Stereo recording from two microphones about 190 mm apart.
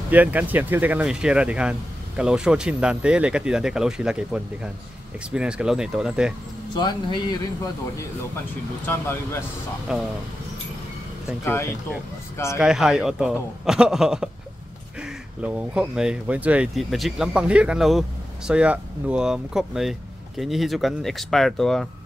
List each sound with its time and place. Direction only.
0.1 s speech: 10° right (ahead or behind)
6.7 s speech: 20° left (ahead or behind)
8.8 s speech: 10° left (ahead or behind)
9.9 s speech: 5° right (ahead or behind)
12.5 s speech: 5° right (ahead or behind)